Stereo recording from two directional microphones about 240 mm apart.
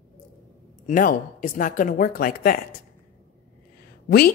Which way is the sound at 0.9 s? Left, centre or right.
Left.